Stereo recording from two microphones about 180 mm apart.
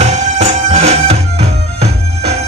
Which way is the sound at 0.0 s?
40° right (ahead or behind).